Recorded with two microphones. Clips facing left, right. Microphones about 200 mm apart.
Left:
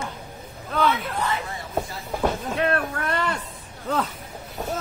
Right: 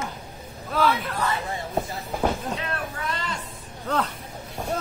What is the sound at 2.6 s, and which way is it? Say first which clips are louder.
Speech: left 8 dB; 60° left (ahead or behind).